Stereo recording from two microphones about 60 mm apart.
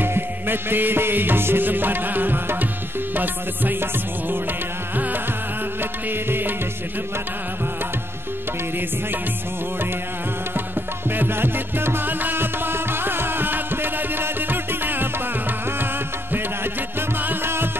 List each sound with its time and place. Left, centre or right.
0.0 s music: right
11.1 s music: right
17.2 s music: right